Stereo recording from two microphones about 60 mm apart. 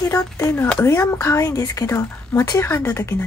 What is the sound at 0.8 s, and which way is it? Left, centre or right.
Speech, left.